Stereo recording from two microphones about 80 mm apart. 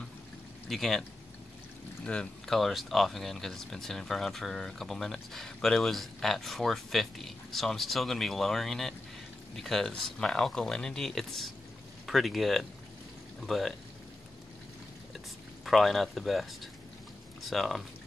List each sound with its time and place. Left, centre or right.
0.7 s speech: centre
2.0 s speech: centre
15.6 s speech: centre